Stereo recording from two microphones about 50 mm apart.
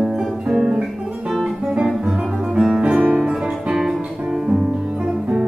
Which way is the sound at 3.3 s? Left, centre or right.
Centre.